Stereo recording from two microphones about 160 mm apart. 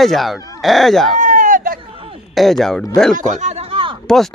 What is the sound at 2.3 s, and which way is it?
Speech, centre (ahead or behind).